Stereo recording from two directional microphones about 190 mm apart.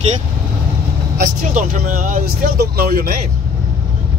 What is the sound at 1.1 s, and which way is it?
Speech, 45° right (ahead or behind).